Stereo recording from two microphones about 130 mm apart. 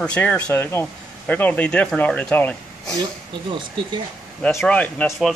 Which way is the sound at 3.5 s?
40° right (ahead or behind).